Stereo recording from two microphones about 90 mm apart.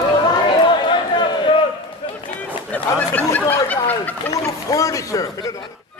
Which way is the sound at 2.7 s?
20° left (ahead or behind).